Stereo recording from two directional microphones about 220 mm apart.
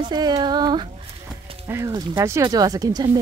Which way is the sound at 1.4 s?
25° right (ahead or behind).